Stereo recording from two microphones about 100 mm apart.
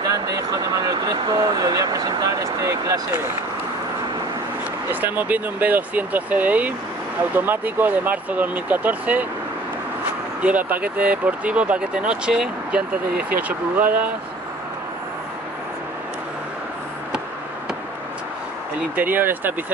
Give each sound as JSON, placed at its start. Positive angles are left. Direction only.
{"t": 0.0, "sound": "speech", "side_deg": -35}
{"t": 4.8, "sound": "speech", "side_deg": -20}
{"t": 10.4, "sound": "speech", "side_deg": -15}
{"t": 18.9, "sound": "speech", "side_deg": -20}